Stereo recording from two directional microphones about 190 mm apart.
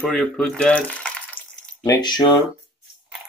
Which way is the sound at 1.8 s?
20° left (ahead or behind).